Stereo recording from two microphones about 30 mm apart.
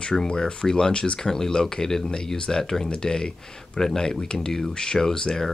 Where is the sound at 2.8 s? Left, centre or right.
Left.